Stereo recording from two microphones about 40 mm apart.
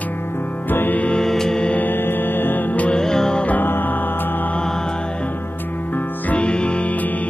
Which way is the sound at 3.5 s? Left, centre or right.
Left.